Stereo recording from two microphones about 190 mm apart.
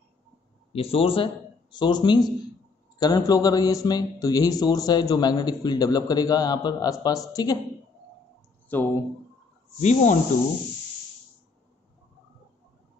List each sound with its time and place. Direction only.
0.7 s a man's voice: 30° left (ahead or behind)
8.6 s speech: 10° left (ahead or behind)
9.8 s speech: 35° left (ahead or behind)